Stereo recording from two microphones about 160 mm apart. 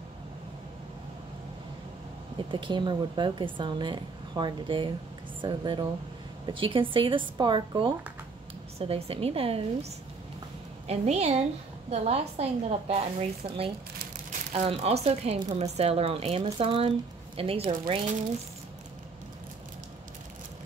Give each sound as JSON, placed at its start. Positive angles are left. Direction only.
{"t": 2.5, "sound": "a woman's voice", "side_deg": -30}
{"t": 10.9, "sound": "a woman's voice", "side_deg": -45}